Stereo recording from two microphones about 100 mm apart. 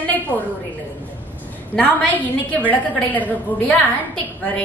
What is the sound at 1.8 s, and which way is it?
A woman's voice, 15° left (ahead or behind).